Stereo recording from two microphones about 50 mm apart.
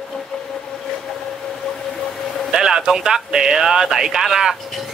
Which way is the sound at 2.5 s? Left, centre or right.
Centre.